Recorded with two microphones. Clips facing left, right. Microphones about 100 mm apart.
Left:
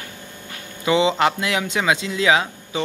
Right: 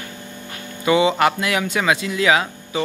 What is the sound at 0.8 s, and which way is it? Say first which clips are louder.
Speech: right 2 dB; 20° left (ahead or behind).